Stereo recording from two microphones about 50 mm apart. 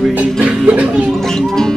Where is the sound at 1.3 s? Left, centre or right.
Centre.